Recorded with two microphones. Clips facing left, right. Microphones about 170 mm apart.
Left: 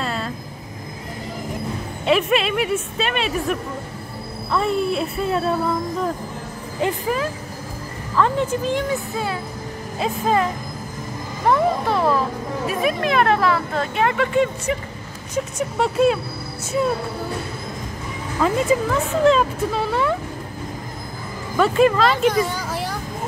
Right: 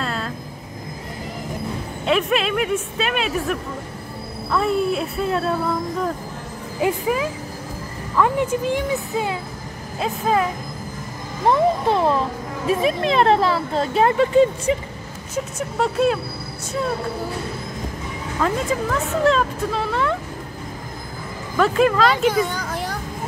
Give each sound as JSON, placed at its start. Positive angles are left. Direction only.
{"t": 0.0, "sound": "vehicle", "side_deg": 0}
{"t": 2.0, "sound": "speech", "side_deg": 0}
{"t": 6.8, "sound": "speech", "side_deg": -5}
{"t": 9.9, "sound": "speech", "side_deg": 0}
{"t": 11.4, "sound": "speech", "side_deg": -25}
{"t": 15.3, "sound": "speech", "side_deg": 0}
{"t": 18.4, "sound": "speech", "side_deg": 5}
{"t": 21.5, "sound": "speech", "side_deg": 0}